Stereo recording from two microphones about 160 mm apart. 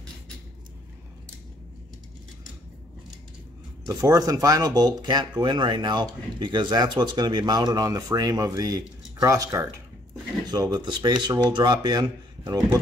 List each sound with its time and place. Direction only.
3.8 s speech: 25° right (ahead or behind)